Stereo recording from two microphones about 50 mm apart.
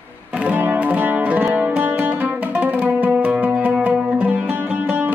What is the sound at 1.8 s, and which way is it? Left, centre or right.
Music, right.